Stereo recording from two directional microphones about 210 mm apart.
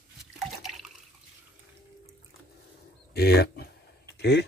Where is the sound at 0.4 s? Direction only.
Centre (ahead or behind).